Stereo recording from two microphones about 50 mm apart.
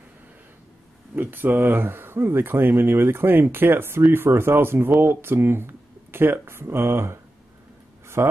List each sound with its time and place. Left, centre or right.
1.1 s speech: right
8.2 s speech: right